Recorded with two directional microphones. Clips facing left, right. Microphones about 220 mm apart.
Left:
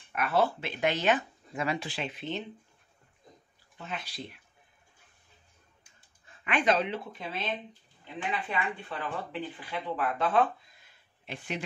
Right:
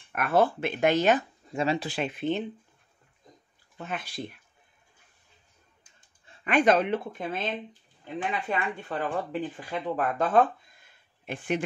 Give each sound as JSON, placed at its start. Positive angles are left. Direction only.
{"t": 0.1, "sound": "speech", "side_deg": -50}
{"t": 1.5, "sound": "speech", "side_deg": -30}
{"t": 1.9, "sound": "speech", "side_deg": -50}
{"t": 3.7, "sound": "speech", "side_deg": -50}
{"t": 6.2, "sound": "a sound", "side_deg": -30}
{"t": 6.5, "sound": "speech", "side_deg": -50}